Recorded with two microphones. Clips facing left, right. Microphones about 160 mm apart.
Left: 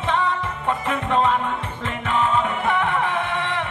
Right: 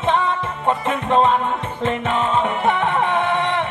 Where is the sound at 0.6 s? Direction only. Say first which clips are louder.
Right 4 dB; 25° right (ahead or behind).